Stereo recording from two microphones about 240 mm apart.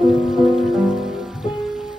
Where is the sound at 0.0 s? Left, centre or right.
Centre.